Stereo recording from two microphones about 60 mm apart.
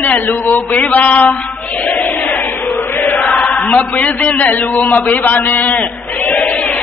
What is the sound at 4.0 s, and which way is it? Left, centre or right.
A man's voice, left.